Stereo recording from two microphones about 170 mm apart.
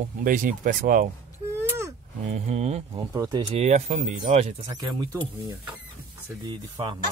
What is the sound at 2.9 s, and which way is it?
Speech, 20° right (ahead or behind).